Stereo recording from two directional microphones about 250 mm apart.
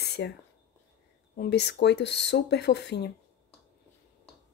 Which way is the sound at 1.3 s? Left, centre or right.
Left.